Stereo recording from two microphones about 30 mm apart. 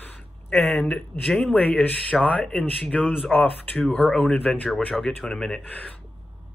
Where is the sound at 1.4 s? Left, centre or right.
Left.